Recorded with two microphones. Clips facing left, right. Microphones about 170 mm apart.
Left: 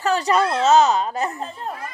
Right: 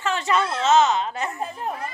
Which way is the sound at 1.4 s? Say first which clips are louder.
Right 1 dB; 10° right (ahead or behind).